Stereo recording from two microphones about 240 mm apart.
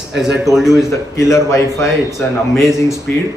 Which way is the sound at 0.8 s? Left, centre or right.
Centre.